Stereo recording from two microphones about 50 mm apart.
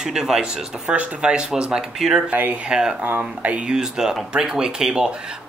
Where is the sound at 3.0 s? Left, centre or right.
Right.